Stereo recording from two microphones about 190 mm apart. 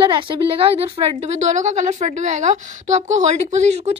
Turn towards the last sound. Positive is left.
turn(degrees=-35)  # may be behind; listen again after turning